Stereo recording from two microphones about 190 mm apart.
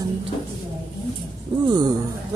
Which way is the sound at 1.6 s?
20° right (ahead or behind).